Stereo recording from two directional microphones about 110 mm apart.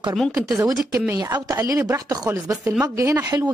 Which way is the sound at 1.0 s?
30° right (ahead or behind).